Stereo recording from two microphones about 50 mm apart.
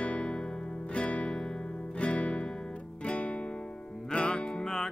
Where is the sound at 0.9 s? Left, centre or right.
Left.